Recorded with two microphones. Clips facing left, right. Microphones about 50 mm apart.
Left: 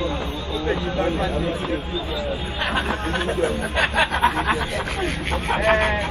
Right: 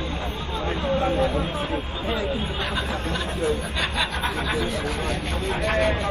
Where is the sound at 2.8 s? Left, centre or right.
Left.